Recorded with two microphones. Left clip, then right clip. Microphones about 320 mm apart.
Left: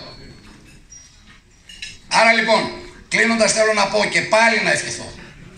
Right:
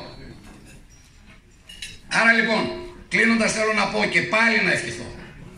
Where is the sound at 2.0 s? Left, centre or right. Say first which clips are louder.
Left 4 dB; centre.